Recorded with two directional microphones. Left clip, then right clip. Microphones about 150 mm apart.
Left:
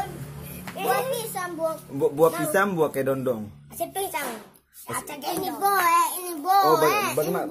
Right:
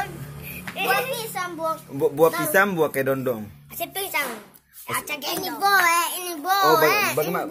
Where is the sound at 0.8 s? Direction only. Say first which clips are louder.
Right 1 dB; 10° left (ahead or behind).